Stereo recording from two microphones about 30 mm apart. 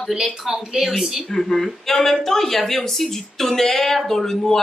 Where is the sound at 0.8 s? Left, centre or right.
Centre.